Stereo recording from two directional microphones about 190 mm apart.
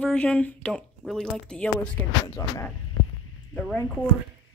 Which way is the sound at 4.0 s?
5° left (ahead or behind).